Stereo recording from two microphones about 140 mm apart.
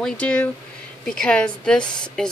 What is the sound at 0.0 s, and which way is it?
Speech, 10° left (ahead or behind).